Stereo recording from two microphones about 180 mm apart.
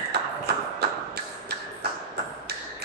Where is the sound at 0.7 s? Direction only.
65° right (ahead or behind).